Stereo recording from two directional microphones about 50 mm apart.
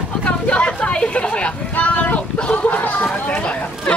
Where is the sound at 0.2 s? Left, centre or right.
Left.